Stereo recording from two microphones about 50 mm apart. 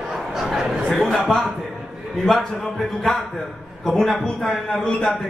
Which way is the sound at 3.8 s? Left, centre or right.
Centre.